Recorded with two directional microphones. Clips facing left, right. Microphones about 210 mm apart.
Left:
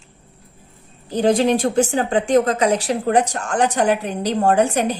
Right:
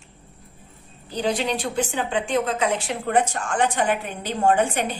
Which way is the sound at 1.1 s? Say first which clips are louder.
Left 8 dB; 45° left (ahead or behind).